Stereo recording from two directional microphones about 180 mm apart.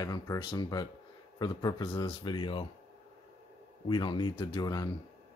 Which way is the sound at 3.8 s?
25° left (ahead or behind).